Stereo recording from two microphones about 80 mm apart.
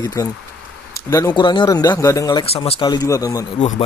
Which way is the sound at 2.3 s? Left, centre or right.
Left.